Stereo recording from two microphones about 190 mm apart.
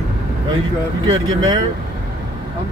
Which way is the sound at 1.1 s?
20° right (ahead or behind).